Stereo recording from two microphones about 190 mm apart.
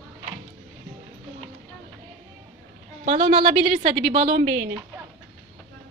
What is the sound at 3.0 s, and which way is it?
A woman's voice, 35° right (ahead or behind).